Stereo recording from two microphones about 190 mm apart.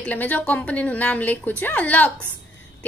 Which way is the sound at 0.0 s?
10° left (ahead or behind).